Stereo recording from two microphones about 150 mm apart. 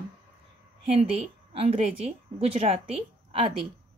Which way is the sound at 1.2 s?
40° right (ahead or behind).